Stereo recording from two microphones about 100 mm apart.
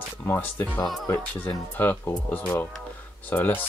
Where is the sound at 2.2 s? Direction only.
20° left (ahead or behind).